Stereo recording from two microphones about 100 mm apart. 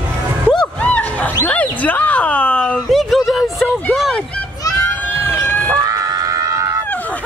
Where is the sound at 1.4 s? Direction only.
15° left (ahead or behind).